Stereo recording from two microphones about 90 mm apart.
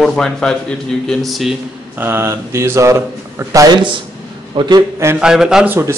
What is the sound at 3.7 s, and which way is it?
Speech, 65° right (ahead or behind).